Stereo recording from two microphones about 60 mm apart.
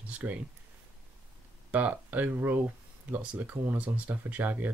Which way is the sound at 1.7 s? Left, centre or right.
Right.